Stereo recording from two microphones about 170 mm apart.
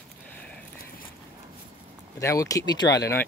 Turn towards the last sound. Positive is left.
turn(degrees=20)  # may be behind; listen again after turning